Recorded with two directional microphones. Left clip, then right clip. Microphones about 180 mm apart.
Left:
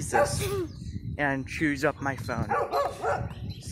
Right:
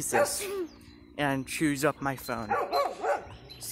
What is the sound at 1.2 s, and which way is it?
Speech, 20° right (ahead or behind).